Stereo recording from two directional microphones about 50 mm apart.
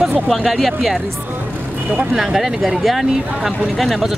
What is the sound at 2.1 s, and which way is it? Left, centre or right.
Speech, centre.